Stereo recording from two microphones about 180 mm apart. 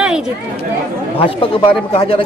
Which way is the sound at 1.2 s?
30° left (ahead or behind).